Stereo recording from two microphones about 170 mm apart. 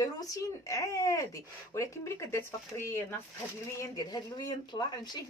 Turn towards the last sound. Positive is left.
turn(degrees=25)  # may be behind; listen again after turning